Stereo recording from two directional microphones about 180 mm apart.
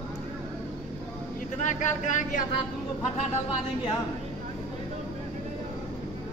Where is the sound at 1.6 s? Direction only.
45° left (ahead or behind).